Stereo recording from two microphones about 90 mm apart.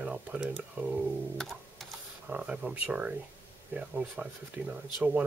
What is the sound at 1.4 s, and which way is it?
Music, centre (ahead or behind).